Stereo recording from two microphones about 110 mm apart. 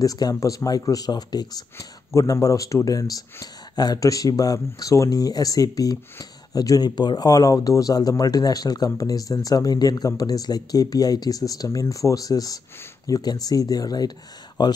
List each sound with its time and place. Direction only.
0.0 s speech: 35° left (ahead or behind)